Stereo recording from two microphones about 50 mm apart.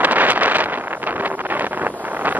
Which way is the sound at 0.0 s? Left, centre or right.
Right.